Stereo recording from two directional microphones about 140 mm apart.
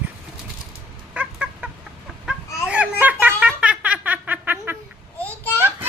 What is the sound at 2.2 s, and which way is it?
Baby laughter, 10° right (ahead or behind).